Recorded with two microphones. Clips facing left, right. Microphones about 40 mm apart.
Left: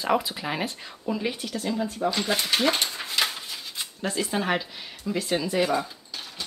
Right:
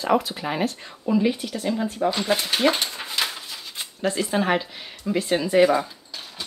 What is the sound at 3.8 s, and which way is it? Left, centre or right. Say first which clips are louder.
Speech: right 4 dB; centre.